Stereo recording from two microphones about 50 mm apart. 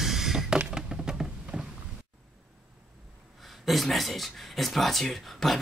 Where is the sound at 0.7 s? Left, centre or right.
Centre.